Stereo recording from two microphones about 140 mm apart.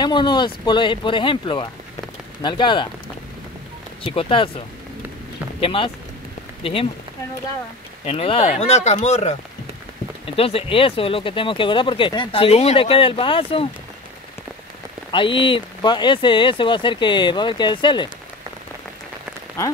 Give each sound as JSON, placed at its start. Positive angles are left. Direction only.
{"t": 0.0, "sound": "speech", "side_deg": 30}
{"t": 4.0, "sound": "speech", "side_deg": 40}
{"t": 8.0, "sound": "speech", "side_deg": 45}
{"t": 10.2, "sound": "speech", "side_deg": 45}
{"t": 15.0, "sound": "speech", "side_deg": 35}